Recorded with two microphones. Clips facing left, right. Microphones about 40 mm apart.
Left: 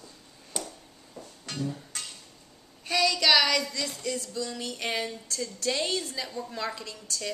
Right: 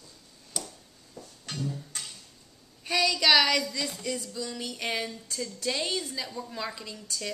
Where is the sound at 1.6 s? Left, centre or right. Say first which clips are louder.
Left 2 dB; centre.